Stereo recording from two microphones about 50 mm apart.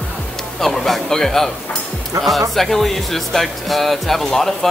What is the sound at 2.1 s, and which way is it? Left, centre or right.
Speech, right.